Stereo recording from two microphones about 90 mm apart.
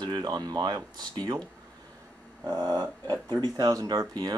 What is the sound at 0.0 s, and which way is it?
Speech, 50° right (ahead or behind).